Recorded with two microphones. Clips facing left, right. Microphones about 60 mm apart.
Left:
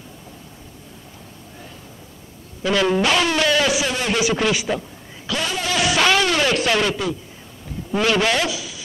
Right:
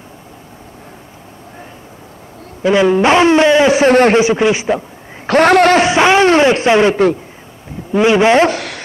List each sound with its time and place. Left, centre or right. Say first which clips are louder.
2.6 s speech: right 8 dB; right
3.7 s a man's voice: right 13 dB; right
4.2 s speech: right 8 dB; right
5.2 s speech: right 16 dB; right
5.8 s speech: right 8 dB; right
8.5 s chopping: right 9 dB; right